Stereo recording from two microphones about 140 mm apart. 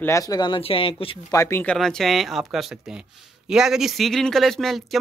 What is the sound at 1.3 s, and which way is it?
Speech, 20° left (ahead or behind).